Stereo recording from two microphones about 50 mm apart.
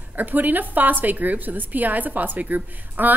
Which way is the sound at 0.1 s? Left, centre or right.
Right.